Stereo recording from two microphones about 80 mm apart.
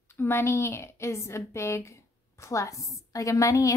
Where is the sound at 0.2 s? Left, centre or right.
Left.